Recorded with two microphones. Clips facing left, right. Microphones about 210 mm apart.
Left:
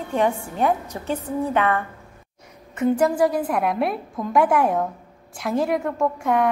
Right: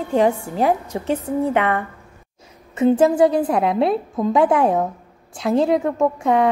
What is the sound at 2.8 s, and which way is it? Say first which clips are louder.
A woman's voice: right 4 dB; 25° right (ahead or behind).